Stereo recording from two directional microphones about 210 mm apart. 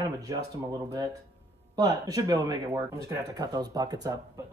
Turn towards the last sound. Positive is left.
turn(degrees=-15)  # may be behind; listen again after turning